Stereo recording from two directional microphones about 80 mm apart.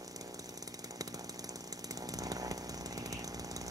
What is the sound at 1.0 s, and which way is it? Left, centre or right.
Chainsaw, right.